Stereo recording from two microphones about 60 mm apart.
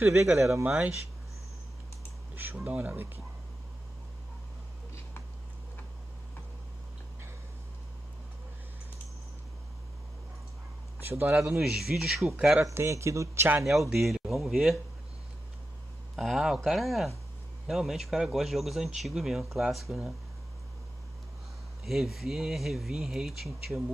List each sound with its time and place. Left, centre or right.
0.0 s a man's voice: right
0.7 s speech: right
2.3 s a sound: right
2.7 s speech: right
11.1 s speech: right
11.9 s speech: centre
12.7 s a man's voice: right
13.7 s speech: centre
16.2 s speech: centre
21.8 s speech: centre